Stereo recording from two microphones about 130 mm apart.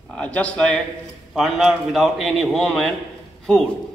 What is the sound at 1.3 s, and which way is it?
A man's voice, 5° right (ahead or behind).